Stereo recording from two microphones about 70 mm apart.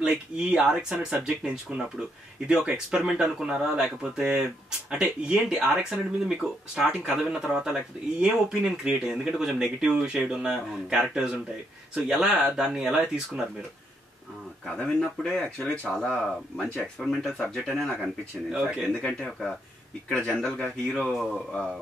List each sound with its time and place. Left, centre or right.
0.0 s speech: centre
14.8 s speech: centre
18.0 s speech: centre
18.9 s speech: centre